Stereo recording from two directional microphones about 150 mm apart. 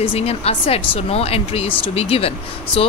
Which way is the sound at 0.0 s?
40° left (ahead or behind).